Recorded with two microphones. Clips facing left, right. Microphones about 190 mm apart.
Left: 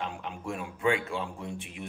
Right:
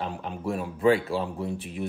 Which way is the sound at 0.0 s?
35° right (ahead or behind).